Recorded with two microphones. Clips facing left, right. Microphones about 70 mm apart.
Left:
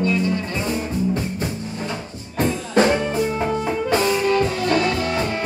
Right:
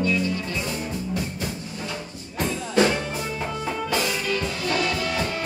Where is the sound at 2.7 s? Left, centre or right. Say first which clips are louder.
Left 3 dB; left.